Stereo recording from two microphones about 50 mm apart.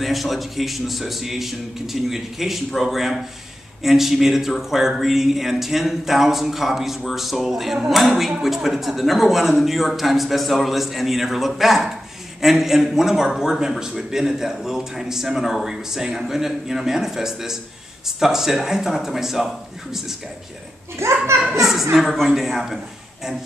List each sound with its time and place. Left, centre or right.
0.0 s a man's voice: centre
21.0 s a child's voice: right
21.5 s a child's voice: centre